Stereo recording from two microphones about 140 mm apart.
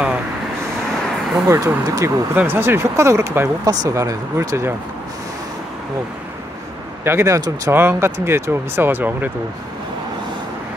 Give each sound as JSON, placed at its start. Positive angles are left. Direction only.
{"t": 1.5, "sound": "speech", "side_deg": -20}
{"t": 7.1, "sound": "speech", "side_deg": -20}